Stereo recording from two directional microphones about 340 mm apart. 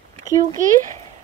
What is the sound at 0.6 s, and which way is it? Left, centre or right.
Speech, right.